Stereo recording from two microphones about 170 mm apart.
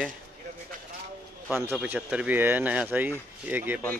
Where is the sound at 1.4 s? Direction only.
10° right (ahead or behind).